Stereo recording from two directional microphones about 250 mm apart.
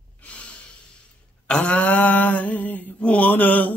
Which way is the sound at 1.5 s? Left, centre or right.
Centre.